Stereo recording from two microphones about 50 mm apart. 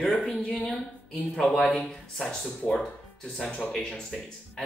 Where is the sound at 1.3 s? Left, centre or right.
Centre.